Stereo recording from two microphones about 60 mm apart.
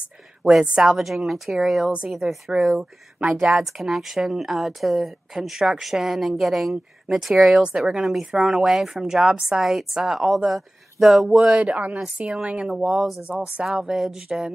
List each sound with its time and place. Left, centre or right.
0.5 s speech: centre
11.5 s speech: right
12.6 s speech: centre
13.2 s speech: right
13.7 s a sound: centre